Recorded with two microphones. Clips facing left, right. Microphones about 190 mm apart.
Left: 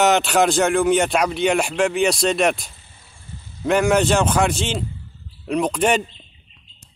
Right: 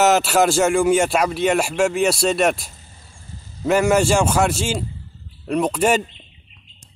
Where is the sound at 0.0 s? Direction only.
5° right (ahead or behind).